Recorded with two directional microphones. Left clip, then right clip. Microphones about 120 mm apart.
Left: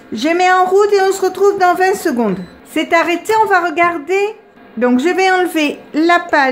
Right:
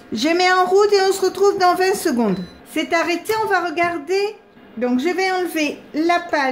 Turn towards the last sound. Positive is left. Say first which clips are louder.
# left 7 dB
turn(degrees=35)  # may be behind; listen again after turning